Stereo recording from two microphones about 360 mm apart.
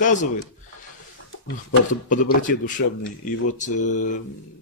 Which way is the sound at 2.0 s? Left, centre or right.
Left.